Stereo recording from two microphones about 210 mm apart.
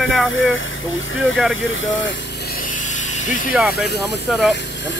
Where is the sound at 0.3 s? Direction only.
65° left (ahead or behind).